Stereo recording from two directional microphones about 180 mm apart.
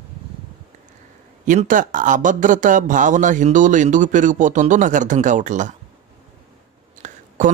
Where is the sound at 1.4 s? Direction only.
45° right (ahead or behind).